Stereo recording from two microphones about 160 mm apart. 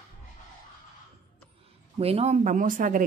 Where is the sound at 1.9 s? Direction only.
40° right (ahead or behind); by 3.0 s 55° right (ahead or behind).